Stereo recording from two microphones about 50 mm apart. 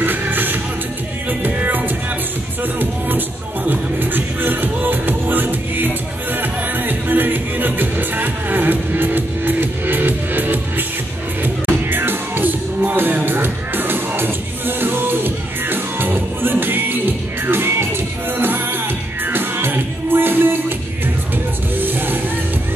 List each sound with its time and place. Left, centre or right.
0.0 s music: right
21.7 s music: right